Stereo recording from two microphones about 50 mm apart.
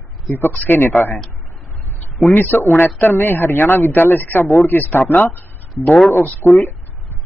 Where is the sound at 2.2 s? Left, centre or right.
Left.